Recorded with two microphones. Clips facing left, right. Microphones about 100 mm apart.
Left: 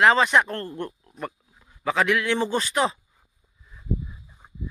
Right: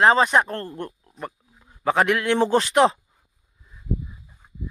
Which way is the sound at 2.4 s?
70° right (ahead or behind).